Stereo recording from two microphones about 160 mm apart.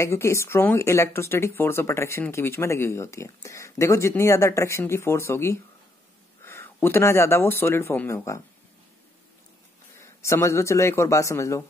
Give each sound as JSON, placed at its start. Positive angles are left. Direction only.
{"t": 0.0, "sound": "speech", "side_deg": 15}
{"t": 9.9, "sound": "speech", "side_deg": 15}